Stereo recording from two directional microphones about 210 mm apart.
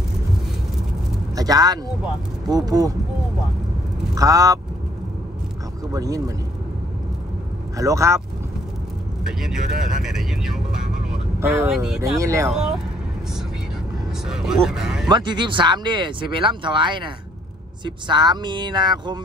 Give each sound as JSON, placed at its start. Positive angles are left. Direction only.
{"t": 1.3, "sound": "speech", "side_deg": -20}
{"t": 4.1, "sound": "speech", "side_deg": -15}
{"t": 5.9, "sound": "speech", "side_deg": -15}
{"t": 7.7, "sound": "speech", "side_deg": -15}
{"t": 9.2, "sound": "speech", "side_deg": 0}
{"t": 11.1, "sound": "vehicle", "side_deg": -10}
{"t": 12.0, "sound": "speech", "side_deg": -15}
{"t": 12.4, "sound": "speech", "side_deg": 0}
{"t": 14.2, "sound": "speech", "side_deg": -5}
{"t": 15.0, "sound": "speech", "side_deg": -20}